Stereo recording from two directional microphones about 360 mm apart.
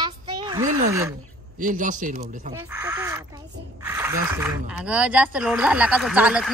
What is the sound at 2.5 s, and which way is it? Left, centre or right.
Crow, centre.